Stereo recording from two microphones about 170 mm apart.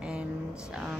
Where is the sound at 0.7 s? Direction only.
5° right (ahead or behind).